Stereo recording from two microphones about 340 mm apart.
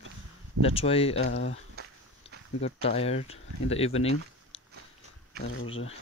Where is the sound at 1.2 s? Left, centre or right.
Left.